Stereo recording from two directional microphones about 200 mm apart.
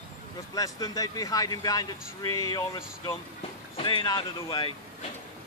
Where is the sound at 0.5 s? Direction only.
20° left (ahead or behind).